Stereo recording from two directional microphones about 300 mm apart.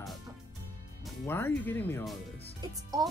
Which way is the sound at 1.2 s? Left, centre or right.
Centre.